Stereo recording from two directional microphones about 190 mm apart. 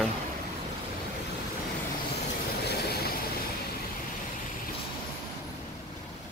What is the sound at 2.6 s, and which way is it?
Train, 55° left (ahead or behind).